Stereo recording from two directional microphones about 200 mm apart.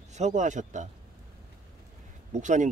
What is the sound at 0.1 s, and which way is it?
Speech, 35° right (ahead or behind).